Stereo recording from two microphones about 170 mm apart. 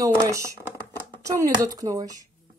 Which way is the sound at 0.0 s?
20° right (ahead or behind).